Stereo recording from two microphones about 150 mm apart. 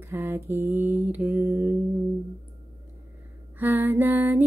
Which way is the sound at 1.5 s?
20° right (ahead or behind).